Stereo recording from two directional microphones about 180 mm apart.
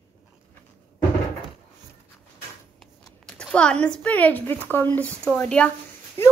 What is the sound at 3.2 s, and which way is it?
A child's voice, 5° left (ahead or behind).